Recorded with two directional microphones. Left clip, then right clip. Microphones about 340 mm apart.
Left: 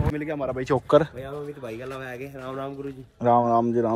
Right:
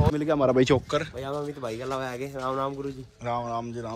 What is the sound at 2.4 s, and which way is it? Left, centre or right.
Speech, centre.